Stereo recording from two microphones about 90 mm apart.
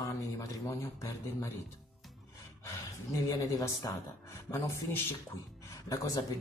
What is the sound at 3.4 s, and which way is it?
Speech, 35° left (ahead or behind).